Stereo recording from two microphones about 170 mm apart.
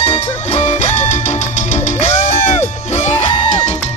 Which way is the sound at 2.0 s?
45° left (ahead or behind).